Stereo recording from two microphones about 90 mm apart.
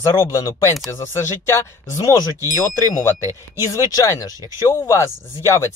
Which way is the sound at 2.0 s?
40° left (ahead or behind).